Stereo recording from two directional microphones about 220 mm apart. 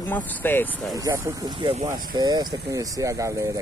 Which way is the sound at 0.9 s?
15° right (ahead or behind).